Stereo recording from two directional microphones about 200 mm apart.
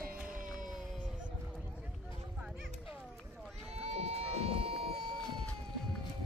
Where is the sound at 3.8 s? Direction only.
30° right (ahead or behind).